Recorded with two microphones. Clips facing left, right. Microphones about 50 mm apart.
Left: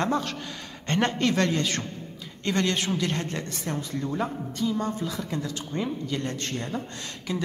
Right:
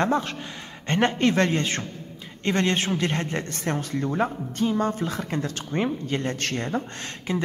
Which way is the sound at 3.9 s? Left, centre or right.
Right.